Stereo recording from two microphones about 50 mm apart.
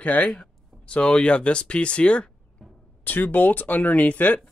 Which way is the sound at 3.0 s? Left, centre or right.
Left.